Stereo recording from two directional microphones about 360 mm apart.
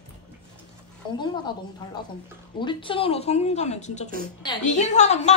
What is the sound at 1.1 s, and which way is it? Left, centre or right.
Speech, centre.